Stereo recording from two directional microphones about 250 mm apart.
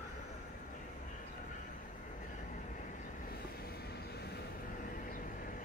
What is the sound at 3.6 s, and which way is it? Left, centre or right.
Vehicle, left.